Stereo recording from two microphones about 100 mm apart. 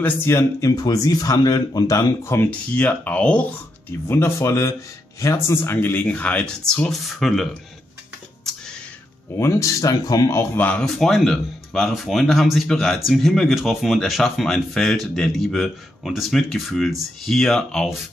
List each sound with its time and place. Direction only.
0.0 s speech: 25° left (ahead or behind)
2.5 s speech: 15° left (ahead or behind)
4.1 s speech: 30° left (ahead or behind); by 7.4 s centre (ahead or behind)
8.5 s a sound: 5° left (ahead or behind)
9.4 s speech: 30° left (ahead or behind)
10.5 s speech: 15° left (ahead or behind)
11.0 s speech: 5° left (ahead or behind)